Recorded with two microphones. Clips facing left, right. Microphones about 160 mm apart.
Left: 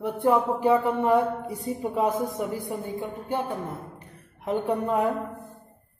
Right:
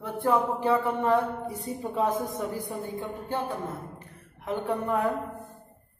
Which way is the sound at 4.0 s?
15° left (ahead or behind).